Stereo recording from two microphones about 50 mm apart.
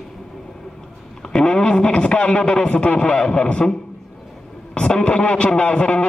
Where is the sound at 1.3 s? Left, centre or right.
Centre.